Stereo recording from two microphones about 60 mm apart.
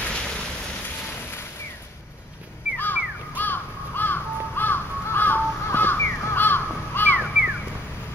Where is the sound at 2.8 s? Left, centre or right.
Left.